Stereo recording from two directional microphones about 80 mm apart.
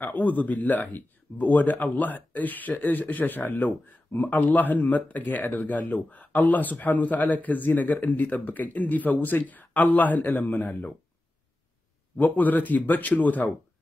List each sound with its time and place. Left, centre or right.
0.0 s speech: left
12.2 s speech: left